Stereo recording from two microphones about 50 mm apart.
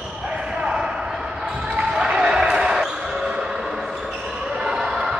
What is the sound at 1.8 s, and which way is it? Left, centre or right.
Basketball bounce, centre.